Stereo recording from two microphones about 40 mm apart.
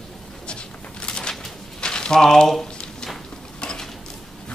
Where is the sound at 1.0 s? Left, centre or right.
Left.